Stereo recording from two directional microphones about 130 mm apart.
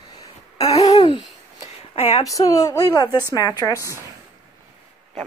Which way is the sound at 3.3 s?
25° left (ahead or behind).